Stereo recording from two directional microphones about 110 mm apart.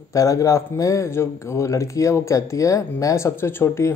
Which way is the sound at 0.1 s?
30° left (ahead or behind).